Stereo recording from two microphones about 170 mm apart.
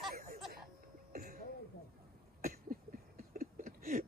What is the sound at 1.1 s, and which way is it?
Throat clearing, 65° right (ahead or behind).